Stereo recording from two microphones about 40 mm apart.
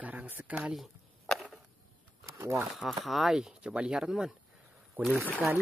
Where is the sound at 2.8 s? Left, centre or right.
Centre.